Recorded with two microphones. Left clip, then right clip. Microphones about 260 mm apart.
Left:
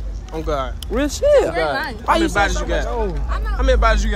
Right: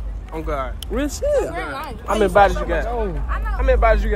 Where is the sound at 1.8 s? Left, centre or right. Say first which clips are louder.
Left 5 dB; left.